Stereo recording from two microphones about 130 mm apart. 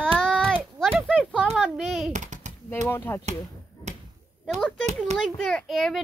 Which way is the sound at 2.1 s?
65° right (ahead or behind).